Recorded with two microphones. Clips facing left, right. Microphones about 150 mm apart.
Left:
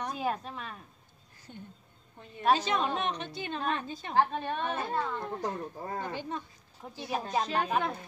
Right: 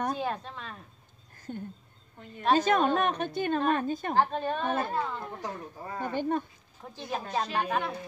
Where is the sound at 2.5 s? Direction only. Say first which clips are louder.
Right 6 dB; 50° right (ahead or behind).